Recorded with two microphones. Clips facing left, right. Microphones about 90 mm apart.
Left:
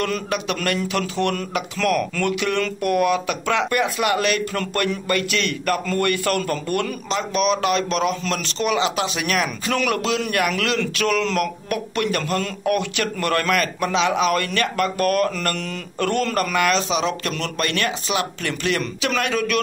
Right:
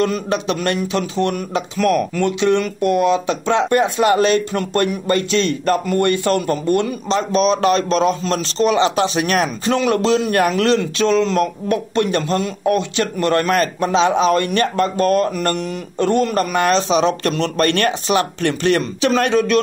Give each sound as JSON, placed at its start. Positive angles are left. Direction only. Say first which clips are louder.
{"t": 0.0, "sound": "a man's voice", "louder": "right 5 dB", "side_deg": -25}
{"t": 7.2, "sound": "a man's voice", "louder": "right 4 dB", "side_deg": -35}